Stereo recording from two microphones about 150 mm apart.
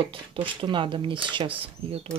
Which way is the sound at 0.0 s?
35° right (ahead or behind).